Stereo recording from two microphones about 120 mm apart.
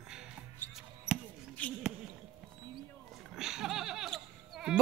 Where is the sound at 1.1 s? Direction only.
5° right (ahead or behind).